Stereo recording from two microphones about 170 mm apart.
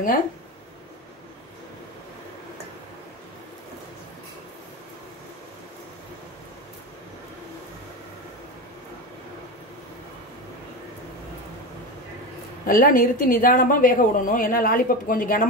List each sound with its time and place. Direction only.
12.6 s a woman's voice: 55° left (ahead or behind)